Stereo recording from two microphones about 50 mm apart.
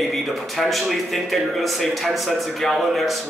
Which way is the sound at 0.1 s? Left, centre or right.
Centre.